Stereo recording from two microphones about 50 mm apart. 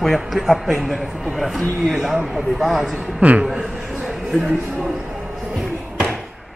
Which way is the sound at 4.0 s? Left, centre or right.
Centre.